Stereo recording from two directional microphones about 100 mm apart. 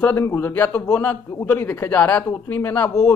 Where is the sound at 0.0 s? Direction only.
20° left (ahead or behind).